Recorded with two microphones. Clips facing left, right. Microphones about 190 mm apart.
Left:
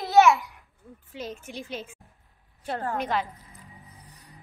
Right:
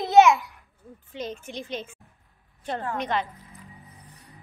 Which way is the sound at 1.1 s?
5° left (ahead or behind).